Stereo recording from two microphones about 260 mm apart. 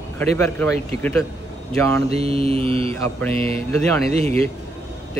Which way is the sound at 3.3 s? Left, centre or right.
Right.